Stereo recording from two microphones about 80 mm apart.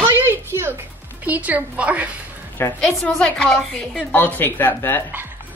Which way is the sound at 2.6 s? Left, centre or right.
Left.